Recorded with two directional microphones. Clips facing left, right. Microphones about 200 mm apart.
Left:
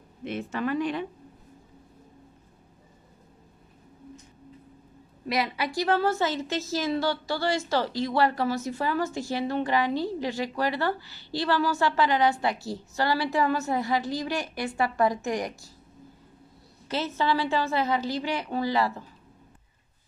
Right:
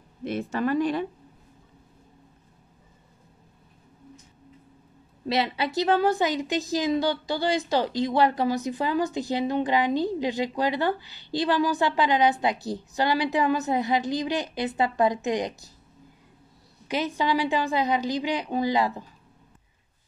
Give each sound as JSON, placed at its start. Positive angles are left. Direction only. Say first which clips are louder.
{"t": 0.2, "sound": "a woman's voice", "louder": "right 3 dB", "side_deg": -40}
{"t": 5.2, "sound": "a woman's voice", "louder": "right 2 dB", "side_deg": -25}
{"t": 16.8, "sound": "a woman's voice", "louder": "right 1 dB", "side_deg": -15}